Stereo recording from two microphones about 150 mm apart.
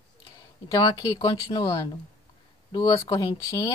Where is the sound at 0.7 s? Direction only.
30° left (ahead or behind).